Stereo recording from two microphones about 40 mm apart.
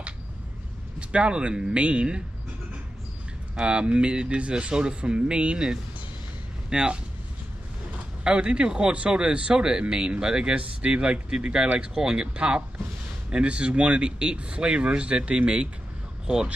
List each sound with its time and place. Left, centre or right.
0.9 s speech: right
3.5 s speech: right
8.2 s speech: right